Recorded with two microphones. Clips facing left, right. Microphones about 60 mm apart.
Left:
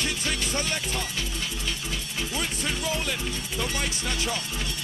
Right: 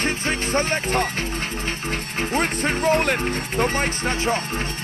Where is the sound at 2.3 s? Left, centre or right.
Right.